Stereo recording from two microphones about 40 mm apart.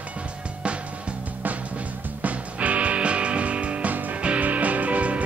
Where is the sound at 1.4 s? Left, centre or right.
Right.